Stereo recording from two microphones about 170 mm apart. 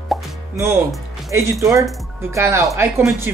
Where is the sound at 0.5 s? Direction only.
15° right (ahead or behind).